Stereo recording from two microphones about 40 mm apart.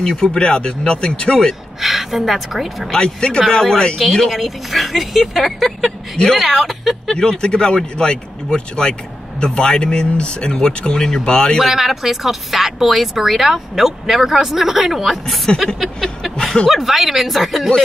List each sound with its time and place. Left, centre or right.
0.0 s speech: centre
1.8 s a woman's voice: centre
2.9 s speech: left
4.2 s speech: centre
7.2 s speech: centre
11.0 s speech: centre
11.2 s speech: left
11.6 s speech: centre
15.6 s a sound: centre
16.7 s speech: centre